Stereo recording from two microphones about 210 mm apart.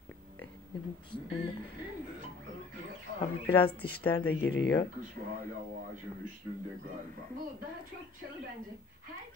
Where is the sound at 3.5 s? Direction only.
25° left (ahead or behind).